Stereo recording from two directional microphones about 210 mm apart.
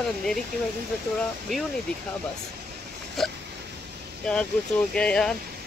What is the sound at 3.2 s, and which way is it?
Speech, centre (ahead or behind).